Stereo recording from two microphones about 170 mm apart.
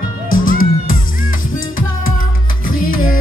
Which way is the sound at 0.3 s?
55° left (ahead or behind).